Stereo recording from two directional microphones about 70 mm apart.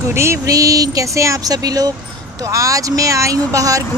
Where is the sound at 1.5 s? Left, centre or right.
Right.